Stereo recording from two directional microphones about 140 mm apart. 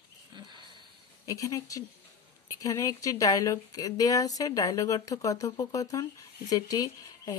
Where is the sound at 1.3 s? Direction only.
25° left (ahead or behind).